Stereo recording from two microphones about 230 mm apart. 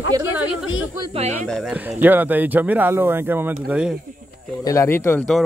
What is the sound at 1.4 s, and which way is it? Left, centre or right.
Speech, centre.